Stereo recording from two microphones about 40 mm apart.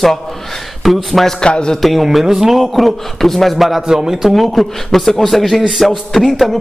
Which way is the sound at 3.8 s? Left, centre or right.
Centre.